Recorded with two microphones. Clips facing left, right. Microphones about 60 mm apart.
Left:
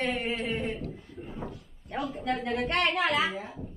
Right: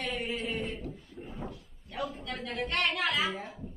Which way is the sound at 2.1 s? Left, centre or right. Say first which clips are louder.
Left 8 dB; centre.